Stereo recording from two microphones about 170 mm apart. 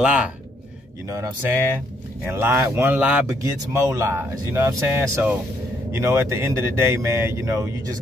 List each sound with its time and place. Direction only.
0.0 s speech: 5° right (ahead or behind)
1.0 s speech: 20° right (ahead or behind)